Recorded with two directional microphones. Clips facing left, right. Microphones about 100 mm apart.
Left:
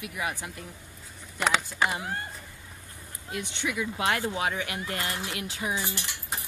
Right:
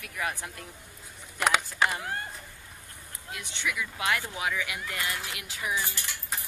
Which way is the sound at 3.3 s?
30° left (ahead or behind).